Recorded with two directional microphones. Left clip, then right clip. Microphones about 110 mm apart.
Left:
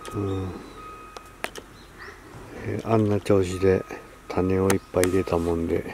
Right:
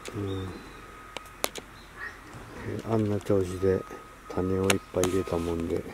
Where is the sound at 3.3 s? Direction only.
20° left (ahead or behind).